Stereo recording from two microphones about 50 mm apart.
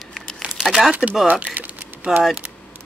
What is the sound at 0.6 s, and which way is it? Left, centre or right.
Speech, centre.